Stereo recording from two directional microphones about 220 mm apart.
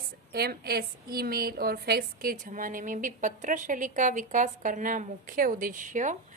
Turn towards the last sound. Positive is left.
turn(degrees=-35)  # may be behind; listen again after turning